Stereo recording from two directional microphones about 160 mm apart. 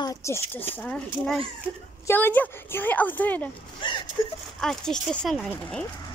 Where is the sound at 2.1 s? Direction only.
10° left (ahead or behind).